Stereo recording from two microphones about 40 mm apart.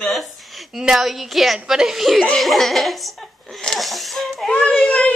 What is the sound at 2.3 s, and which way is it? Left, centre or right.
Speech, centre.